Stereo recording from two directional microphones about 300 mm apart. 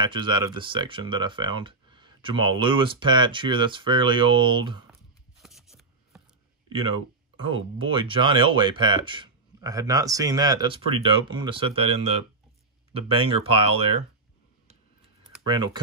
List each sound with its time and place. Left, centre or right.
0.0 s speech: centre
5.4 s a sound: centre
7.3 s speech: centre
15.4 s speech: centre